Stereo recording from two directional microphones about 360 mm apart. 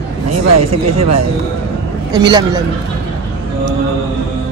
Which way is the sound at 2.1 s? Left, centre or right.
Centre.